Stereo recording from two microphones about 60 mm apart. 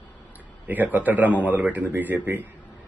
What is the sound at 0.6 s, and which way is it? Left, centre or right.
Speech, right.